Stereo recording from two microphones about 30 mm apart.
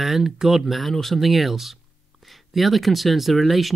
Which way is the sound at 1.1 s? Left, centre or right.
Centre.